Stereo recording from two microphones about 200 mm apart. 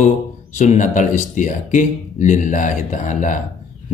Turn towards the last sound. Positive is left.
turn(degrees=40)  # may be behind; listen again after turning